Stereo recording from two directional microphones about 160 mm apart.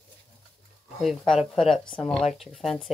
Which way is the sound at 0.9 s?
Centre (ahead or behind).